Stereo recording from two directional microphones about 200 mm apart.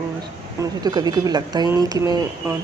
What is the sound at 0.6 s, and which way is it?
Speech, 20° right (ahead or behind).